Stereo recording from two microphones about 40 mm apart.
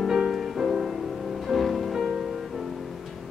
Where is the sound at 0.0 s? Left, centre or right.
Centre.